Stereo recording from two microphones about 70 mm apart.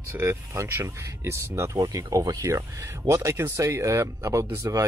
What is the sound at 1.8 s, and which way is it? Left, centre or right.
Speech, right.